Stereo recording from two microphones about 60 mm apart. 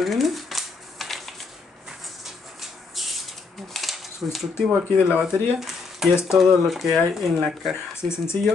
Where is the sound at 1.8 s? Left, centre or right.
Centre.